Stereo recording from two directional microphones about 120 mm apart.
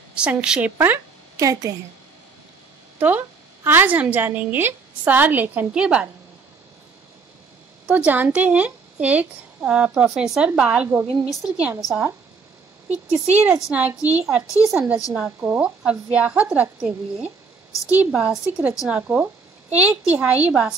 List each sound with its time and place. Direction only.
0.1 s a woman's voice: 10° right (ahead or behind)
1.4 s a woman's voice: 30° right (ahead or behind)
3.0 s a woman's voice: 15° right (ahead or behind)
7.8 s a woman's voice: 15° right (ahead or behind)